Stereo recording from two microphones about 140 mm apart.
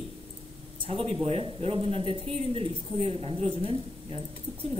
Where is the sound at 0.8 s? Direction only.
45° right (ahead or behind).